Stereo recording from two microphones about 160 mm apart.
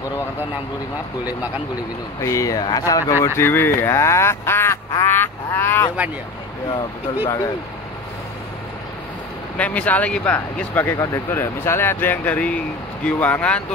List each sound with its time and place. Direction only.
2.2 s speech: 20° left (ahead or behind)
9.6 s speech: 10° left (ahead or behind)